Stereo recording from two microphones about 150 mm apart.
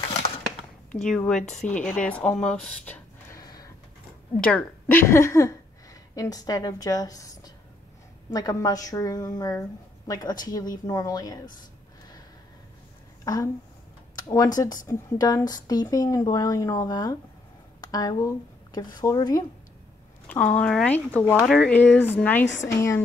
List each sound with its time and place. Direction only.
1.0 s a woman's voice: 5° left (ahead or behind)
3.3 s a sound: 25° left (ahead or behind)
4.4 s a woman's voice: 10° left (ahead or behind); by 11.3 s 25° left (ahead or behind)
13.2 s a woman's voice: 20° left (ahead or behind)
20.2 s a woman's voice: 10° left (ahead or behind)